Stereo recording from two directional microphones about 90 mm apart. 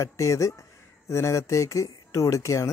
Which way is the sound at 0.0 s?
35° left (ahead or behind).